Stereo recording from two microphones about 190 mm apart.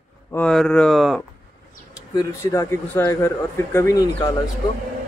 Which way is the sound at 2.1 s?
15° left (ahead or behind).